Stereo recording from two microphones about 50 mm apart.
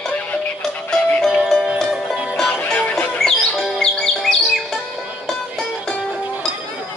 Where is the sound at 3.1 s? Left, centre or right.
Centre.